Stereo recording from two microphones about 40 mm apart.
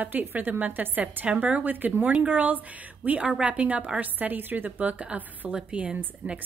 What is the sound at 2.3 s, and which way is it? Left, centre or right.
A woman's voice, right.